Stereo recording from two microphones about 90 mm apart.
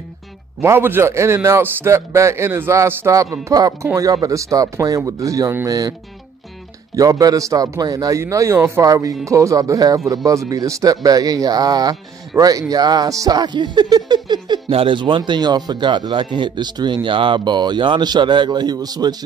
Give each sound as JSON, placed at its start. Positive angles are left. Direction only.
{"t": 0.6, "sound": "a man's voice", "side_deg": -25}
{"t": 7.0, "sound": "a man's voice", "side_deg": -45}
{"t": 14.7, "sound": "speech", "side_deg": -80}